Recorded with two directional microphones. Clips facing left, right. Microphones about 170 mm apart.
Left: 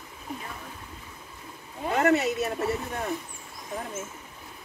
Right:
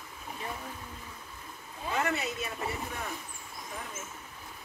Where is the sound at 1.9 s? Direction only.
60° left (ahead or behind).